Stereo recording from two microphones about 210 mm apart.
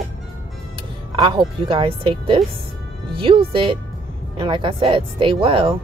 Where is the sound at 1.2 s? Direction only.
20° right (ahead or behind).